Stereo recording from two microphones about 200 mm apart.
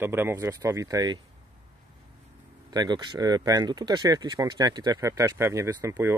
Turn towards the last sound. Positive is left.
turn(degrees=-15)  # may be behind; listen again after turning